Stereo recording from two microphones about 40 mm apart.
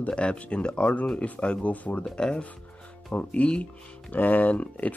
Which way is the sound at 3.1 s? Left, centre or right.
Left.